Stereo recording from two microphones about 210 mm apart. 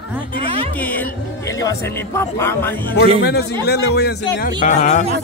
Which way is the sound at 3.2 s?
50° left (ahead or behind).